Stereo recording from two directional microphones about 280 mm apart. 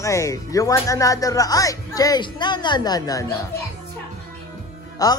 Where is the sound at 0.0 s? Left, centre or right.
Centre.